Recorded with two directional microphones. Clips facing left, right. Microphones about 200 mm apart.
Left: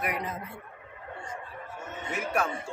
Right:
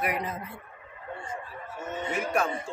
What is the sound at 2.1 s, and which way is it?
Speech, 5° left (ahead or behind).